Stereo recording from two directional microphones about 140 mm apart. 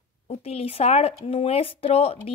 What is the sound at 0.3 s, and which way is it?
Speech, 45° left (ahead or behind).